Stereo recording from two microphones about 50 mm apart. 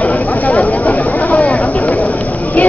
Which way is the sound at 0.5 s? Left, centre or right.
Left.